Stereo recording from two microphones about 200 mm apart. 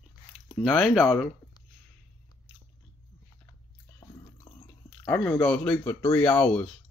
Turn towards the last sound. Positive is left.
turn(degrees=5)  # may be behind; listen again after turning